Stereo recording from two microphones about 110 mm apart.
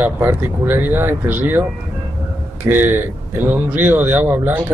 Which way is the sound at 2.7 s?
20° right (ahead or behind).